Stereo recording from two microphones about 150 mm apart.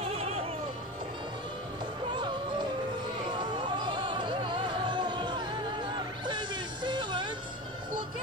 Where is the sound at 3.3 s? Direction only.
30° right (ahead or behind).